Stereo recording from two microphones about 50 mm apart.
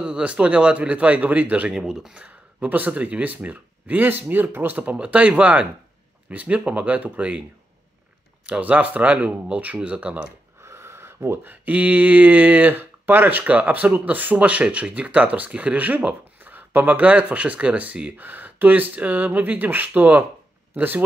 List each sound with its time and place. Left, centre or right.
0.0 s speech: right
1.7 s speech: centre
2.1 s speech: right
4.9 s speech: right
8.5 s speech: right
10.6 s a sound: right
11.4 s speech: right